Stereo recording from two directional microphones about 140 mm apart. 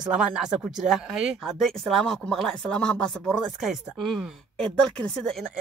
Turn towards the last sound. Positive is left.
turn(degrees=5)  # may be behind; listen again after turning